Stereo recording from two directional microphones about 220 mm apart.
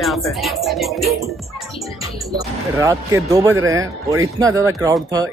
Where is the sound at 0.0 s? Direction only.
Centre (ahead or behind).